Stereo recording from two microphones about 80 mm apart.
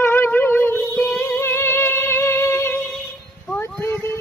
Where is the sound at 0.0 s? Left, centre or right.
Left.